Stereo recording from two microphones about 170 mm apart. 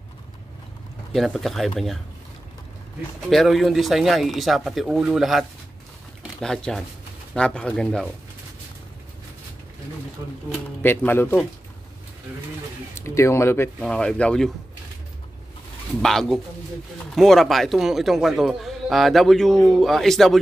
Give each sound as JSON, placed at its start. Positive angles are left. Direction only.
{"t": 1.1, "sound": "a man's voice", "side_deg": 0}
{"t": 3.3, "sound": "a man's voice", "side_deg": 0}
{"t": 6.4, "sound": "a man's voice", "side_deg": 5}
{"t": 10.8, "sound": "speech", "side_deg": 10}
{"t": 13.0, "sound": "speech", "side_deg": 15}
{"t": 13.7, "sound": "a man's voice", "side_deg": 5}
{"t": 16.0, "sound": "a man's voice", "side_deg": 5}